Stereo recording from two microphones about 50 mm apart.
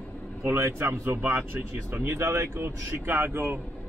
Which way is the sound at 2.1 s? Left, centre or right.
Right.